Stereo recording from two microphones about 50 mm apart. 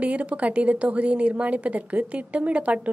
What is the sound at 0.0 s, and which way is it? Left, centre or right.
A woman's voice, right.